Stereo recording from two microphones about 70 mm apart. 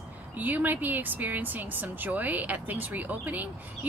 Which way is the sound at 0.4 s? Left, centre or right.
Right.